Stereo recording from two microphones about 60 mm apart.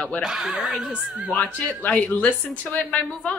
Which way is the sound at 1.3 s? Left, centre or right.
Left.